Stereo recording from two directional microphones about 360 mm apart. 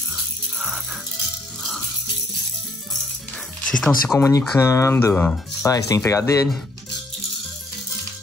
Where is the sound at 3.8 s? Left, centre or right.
Centre.